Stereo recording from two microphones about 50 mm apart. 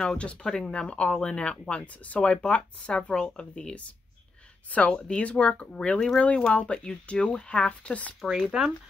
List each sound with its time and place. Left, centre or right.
0.2 s speech: centre
4.6 s speech: left
8.2 s speech: centre
8.5 s speech: centre